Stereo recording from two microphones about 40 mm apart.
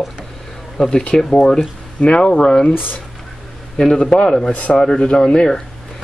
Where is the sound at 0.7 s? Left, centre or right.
Centre.